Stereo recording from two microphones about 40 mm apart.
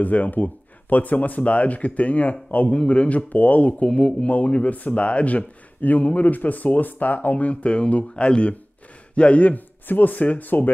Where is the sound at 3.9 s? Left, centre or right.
Left.